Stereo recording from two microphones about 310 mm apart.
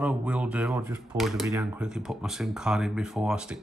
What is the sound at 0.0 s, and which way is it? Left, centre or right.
Speech, centre.